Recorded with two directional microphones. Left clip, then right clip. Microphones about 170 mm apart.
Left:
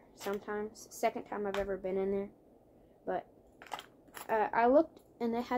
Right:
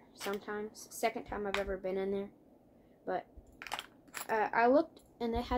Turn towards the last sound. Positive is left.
turn(degrees=0)  # may be behind; listen again after turning